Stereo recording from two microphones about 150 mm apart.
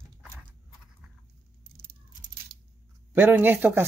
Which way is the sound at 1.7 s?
70° right (ahead or behind).